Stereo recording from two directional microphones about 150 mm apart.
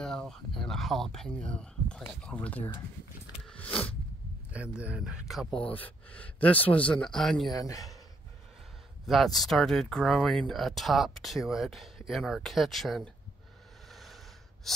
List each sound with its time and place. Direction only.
0.0 s speech: 5° left (ahead or behind)
3.4 s a sound: 10° left (ahead or behind)
4.5 s speech: 10° right (ahead or behind)
7.5 s a man's voice: 20° left (ahead or behind)
9.0 s speech: centre (ahead or behind)
13.9 s a sound: centre (ahead or behind)